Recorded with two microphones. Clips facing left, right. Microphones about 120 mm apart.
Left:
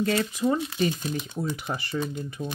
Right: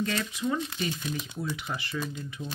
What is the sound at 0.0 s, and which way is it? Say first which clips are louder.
Speech: left 6 dB; 40° left (ahead or behind).